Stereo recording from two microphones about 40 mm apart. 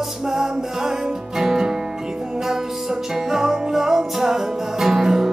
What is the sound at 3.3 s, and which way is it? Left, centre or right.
Music, centre.